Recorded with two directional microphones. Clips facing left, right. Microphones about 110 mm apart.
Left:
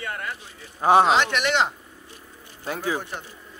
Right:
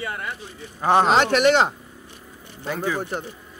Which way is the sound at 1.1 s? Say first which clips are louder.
Right 5 dB; 40° right (ahead or behind).